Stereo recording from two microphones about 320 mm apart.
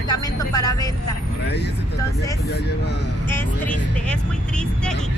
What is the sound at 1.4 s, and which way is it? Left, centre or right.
Speech, left.